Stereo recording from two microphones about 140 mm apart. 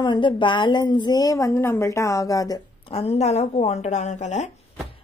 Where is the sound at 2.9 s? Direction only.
45° left (ahead or behind).